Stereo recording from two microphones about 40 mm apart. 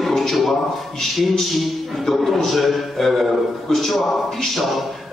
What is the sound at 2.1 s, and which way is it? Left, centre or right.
A man's voice, centre.